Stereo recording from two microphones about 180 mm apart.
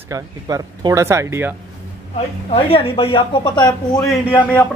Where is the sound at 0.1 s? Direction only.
20° right (ahead or behind).